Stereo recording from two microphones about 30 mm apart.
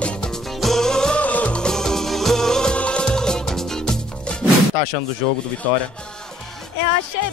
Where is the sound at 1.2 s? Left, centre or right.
Left.